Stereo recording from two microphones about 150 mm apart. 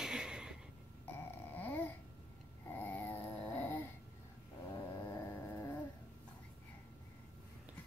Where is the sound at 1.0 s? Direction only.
10° left (ahead or behind).